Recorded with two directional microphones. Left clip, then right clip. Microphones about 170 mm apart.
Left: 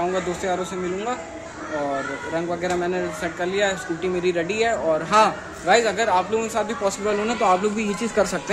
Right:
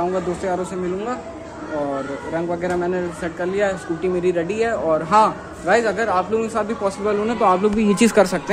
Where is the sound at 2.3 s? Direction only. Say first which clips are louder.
Right 2 dB; 10° left (ahead or behind).